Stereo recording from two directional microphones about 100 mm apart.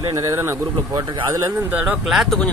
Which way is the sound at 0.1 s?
30° right (ahead or behind).